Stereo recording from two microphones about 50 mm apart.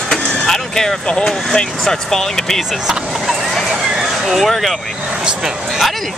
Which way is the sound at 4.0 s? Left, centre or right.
Centre.